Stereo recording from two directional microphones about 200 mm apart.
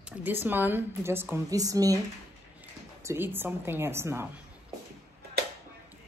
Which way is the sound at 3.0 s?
10° right (ahead or behind).